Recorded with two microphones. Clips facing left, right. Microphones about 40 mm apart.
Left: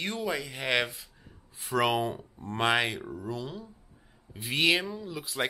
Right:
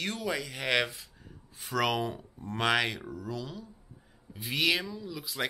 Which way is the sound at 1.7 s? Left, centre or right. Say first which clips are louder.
Left 3 dB; centre.